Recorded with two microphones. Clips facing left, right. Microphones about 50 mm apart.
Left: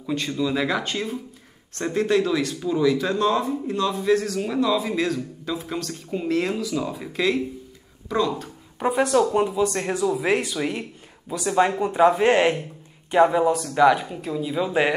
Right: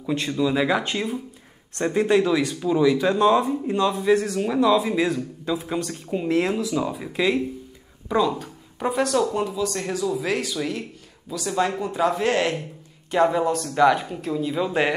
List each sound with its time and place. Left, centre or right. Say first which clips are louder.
0.1 s speech: right 2 dB; centre
2.0 s a man's voice: right 1 dB; centre
4.4 s speech: right 3 dB; centre
5.5 s speech: right 3 dB; centre
6.2 s speech: right 2 dB; centre
8.7 s speech: left 2 dB; centre
9.2 s speech: left 3 dB; left
13.1 s speech: left 2 dB; centre